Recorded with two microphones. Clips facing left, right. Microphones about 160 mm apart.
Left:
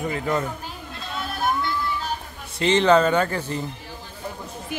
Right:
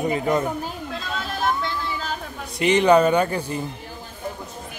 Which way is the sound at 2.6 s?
15° right (ahead or behind).